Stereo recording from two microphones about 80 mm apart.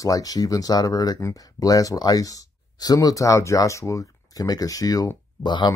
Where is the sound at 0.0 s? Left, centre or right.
Left.